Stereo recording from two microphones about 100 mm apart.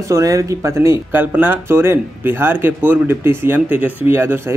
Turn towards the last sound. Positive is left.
turn(degrees=-25)  # may be behind; listen again after turning